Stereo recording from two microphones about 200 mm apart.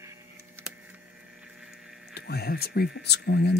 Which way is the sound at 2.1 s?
55° left (ahead or behind).